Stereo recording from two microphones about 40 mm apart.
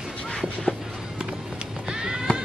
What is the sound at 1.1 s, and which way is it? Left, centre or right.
Music, centre.